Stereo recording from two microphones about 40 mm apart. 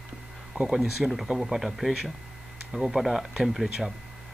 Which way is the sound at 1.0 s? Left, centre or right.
Centre.